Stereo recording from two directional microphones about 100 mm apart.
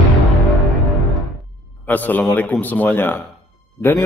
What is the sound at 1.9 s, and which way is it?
A man's voice, 15° left (ahead or behind).